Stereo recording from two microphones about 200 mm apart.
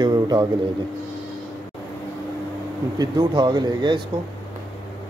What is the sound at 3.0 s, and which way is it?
Speech, 20° right (ahead or behind).